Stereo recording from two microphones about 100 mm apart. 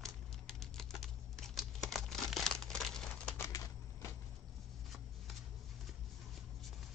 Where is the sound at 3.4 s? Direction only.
35° left (ahead or behind).